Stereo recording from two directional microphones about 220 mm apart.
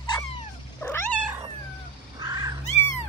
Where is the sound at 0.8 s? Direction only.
10° left (ahead or behind).